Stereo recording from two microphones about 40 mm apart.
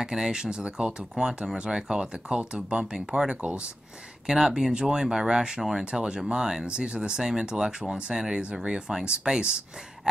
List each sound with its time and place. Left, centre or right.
0.0 s speech: centre
5.9 s speech: centre